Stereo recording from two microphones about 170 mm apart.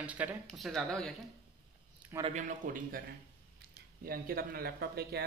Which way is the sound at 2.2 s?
45° right (ahead or behind).